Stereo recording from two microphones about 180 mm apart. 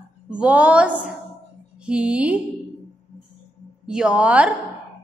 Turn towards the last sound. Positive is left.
turn(degrees=-10)  # may be behind; listen again after turning